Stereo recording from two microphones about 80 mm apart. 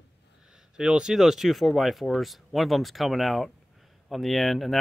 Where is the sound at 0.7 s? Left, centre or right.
Centre.